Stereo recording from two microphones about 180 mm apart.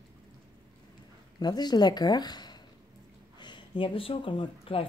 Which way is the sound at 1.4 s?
25° left (ahead or behind).